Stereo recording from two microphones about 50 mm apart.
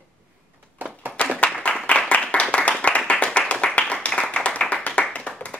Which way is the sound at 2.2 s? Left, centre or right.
Left.